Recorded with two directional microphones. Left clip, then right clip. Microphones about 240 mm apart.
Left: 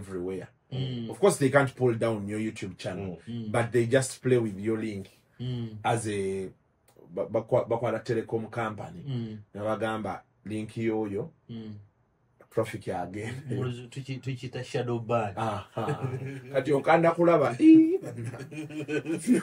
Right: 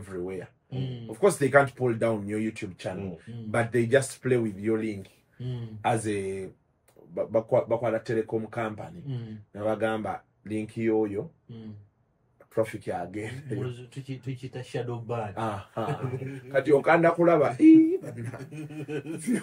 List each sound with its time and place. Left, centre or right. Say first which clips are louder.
0.0 s speech: even; centre
12.5 s speech: right 1 dB; centre
14.0 s speech: even; centre
15.3 s speech: even; centre
18.5 s speech: left 5 dB; centre